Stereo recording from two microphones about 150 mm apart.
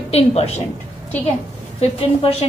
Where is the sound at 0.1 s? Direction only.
45° left (ahead or behind).